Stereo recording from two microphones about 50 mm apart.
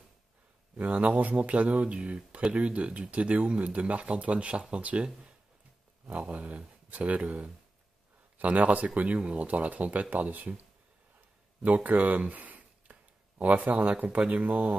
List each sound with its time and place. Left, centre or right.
0.8 s speech: right
11.6 s speech: right